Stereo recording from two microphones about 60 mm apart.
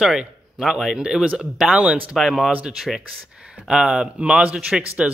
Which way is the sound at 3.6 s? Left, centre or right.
Centre.